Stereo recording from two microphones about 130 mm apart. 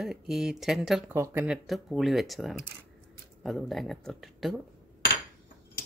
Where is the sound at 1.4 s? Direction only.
Centre (ahead or behind).